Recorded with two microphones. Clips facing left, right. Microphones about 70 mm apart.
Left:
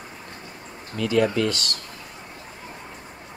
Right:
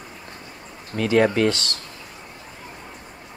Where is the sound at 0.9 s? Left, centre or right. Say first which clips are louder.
Right 3 dB; right.